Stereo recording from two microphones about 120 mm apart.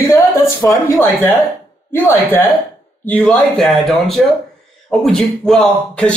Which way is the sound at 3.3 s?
Centre (ahead or behind).